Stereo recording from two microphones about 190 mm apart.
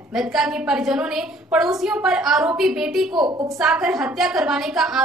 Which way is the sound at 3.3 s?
20° right (ahead or behind).